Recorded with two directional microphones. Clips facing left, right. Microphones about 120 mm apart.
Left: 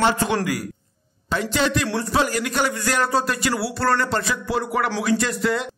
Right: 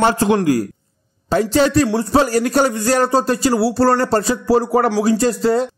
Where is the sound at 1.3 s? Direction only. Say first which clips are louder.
Right 7 dB; 40° right (ahead or behind).